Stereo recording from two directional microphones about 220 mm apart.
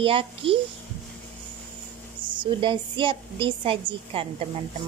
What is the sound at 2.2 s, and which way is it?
A woman's voice, 20° right (ahead or behind).